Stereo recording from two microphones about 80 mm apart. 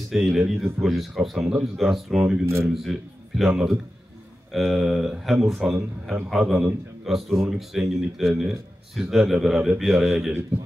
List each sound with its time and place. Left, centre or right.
0.1 s speech: centre
2.4 s speech: right
2.7 s speech: centre